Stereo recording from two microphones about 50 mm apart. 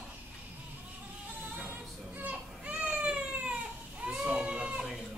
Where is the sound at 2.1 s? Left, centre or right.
Right.